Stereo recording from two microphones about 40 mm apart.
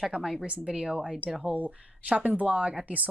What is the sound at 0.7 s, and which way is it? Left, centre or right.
Speech, centre.